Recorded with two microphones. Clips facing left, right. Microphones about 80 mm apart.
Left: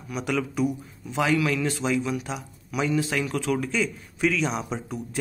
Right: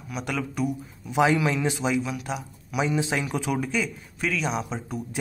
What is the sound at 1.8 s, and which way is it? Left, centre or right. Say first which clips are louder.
A man's voice: left 1 dB; centre.